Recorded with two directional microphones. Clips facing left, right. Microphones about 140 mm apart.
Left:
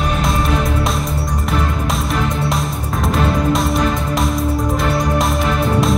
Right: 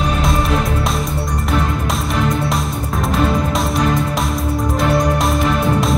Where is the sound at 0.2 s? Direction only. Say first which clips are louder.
Even; centre (ahead or behind).